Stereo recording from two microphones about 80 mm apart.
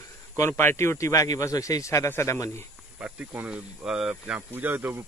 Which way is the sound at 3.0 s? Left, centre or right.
Centre.